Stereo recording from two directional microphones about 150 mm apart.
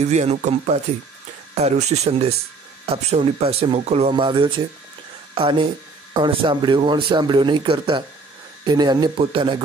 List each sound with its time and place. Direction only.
0.0 s speech: 50° right (ahead or behind)